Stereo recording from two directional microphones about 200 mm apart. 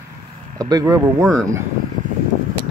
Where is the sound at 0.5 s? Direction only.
20° right (ahead or behind).